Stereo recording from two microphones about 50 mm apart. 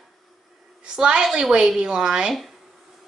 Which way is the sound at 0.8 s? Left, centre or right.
Centre.